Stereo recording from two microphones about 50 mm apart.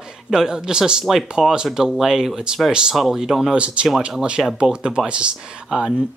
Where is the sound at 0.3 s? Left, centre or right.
Centre.